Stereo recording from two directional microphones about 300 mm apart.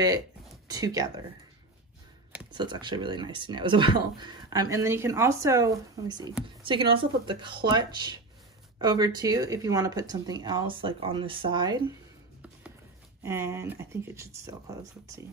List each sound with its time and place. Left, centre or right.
0.7 s speech: centre
2.5 s speech: centre
13.2 s speech: centre